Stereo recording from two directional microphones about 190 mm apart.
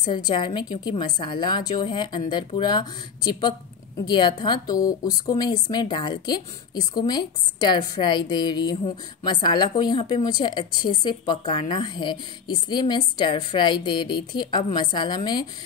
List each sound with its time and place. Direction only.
0.1 s a woman's voice: 25° left (ahead or behind)